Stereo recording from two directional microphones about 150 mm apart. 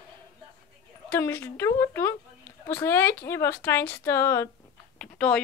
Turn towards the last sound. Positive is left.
turn(degrees=5)  # may be behind; listen again after turning